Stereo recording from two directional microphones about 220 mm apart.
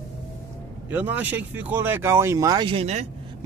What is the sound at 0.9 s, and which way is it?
Speech, 5° right (ahead or behind).